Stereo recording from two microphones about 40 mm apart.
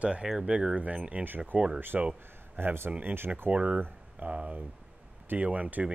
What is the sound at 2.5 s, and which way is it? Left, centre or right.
Speech, right.